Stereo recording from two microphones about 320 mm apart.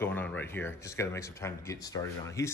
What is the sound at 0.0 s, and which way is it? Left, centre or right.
Speech, centre.